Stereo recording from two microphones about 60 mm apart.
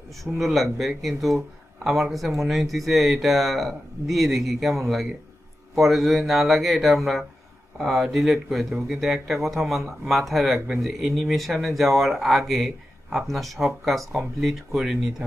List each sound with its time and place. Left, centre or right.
0.2 s speech: centre